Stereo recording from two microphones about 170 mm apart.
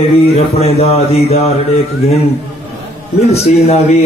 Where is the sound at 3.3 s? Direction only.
40° left (ahead or behind).